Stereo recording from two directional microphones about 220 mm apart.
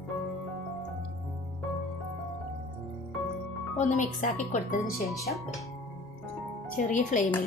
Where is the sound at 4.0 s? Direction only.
35° left (ahead or behind).